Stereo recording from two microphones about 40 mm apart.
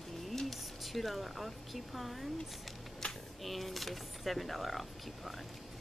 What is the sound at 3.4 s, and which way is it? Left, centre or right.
Speech, centre.